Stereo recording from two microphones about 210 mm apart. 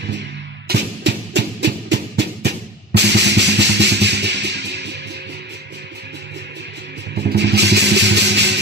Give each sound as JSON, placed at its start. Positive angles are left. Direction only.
{"t": 0.7, "sound": "music", "side_deg": -55}
{"t": 7.2, "sound": "music", "side_deg": -55}